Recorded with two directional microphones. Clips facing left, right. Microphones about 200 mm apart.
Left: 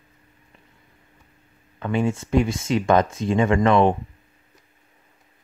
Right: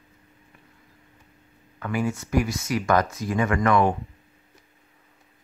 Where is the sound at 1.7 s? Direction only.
25° left (ahead or behind).